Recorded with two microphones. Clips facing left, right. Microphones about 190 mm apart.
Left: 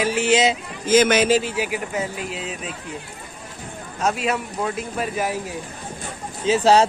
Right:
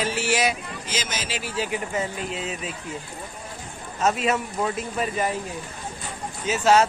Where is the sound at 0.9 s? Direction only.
60° left (ahead or behind).